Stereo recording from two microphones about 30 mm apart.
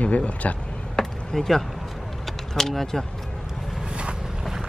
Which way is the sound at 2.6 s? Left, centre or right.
Centre.